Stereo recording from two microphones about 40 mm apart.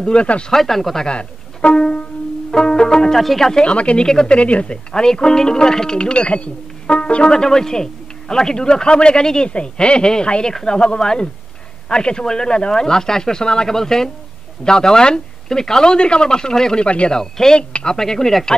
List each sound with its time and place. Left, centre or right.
0.0 s speech: left
0.5 s speech: centre
1.0 s music: left
3.2 s speech: centre
3.4 s speech: centre
3.7 s speech: left
4.0 s speech: centre
4.4 s speech: left
4.9 s speech: centre
16.8 s speech: left
17.1 s speech: centre
17.6 s speech: left
17.9 s speech: centre